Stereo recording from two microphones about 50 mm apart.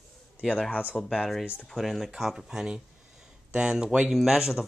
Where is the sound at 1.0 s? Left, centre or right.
Centre.